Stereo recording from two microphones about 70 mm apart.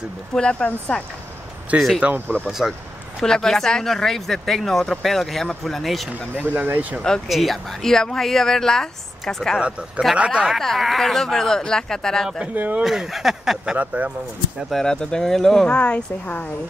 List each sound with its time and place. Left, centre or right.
0.3 s speech: centre
1.7 s speech: right
2.4 s speech: centre
3.2 s speech: centre
6.4 s speech: right
7.0 s speech: centre
9.6 s speech: centre
10.6 s speech: centre
12.5 s speech: right
12.8 s speech: centre
13.7 s speech: right
14.7 s speech: centre
15.7 s speech: centre